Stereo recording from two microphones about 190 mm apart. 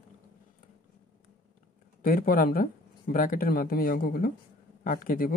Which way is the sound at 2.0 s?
50° left (ahead or behind).